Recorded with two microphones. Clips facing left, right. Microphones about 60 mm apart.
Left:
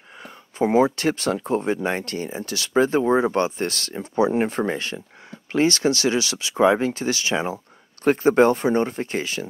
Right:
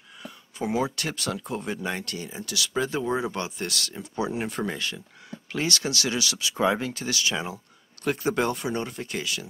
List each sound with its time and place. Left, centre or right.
0.2 s speech: left